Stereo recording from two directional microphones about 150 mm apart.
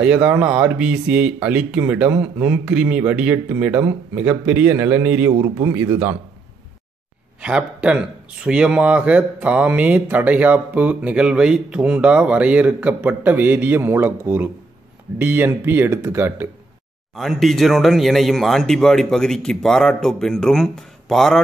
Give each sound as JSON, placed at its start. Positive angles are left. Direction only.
{"t": 0.0, "sound": "speech", "side_deg": -10}
{"t": 7.4, "sound": "speech", "side_deg": -5}
{"t": 17.1, "sound": "speech", "side_deg": 0}